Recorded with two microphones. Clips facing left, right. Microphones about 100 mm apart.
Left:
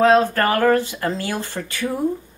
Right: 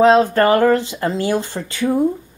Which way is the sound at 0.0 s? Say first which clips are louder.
Right 3 dB; 20° right (ahead or behind).